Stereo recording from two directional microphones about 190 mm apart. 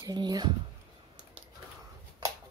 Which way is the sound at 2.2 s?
20° right (ahead or behind).